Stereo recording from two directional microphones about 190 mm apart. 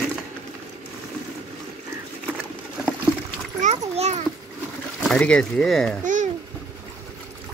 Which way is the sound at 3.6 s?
35° right (ahead or behind).